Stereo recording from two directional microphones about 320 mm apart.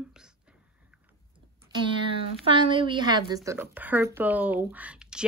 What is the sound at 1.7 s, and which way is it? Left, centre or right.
A woman's voice, centre.